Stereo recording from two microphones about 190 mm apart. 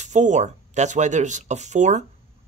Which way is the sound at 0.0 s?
40° right (ahead or behind).